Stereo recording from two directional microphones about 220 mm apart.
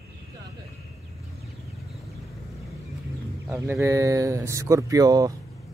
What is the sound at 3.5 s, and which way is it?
Speech, 10° right (ahead or behind).